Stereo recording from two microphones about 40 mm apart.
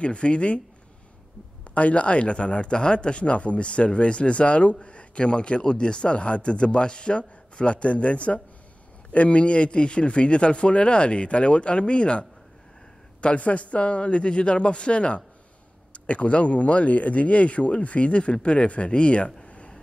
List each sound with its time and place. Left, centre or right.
0.0 s a man's voice: left
1.7 s a man's voice: left